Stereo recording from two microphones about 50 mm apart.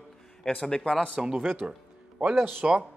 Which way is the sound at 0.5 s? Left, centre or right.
Centre.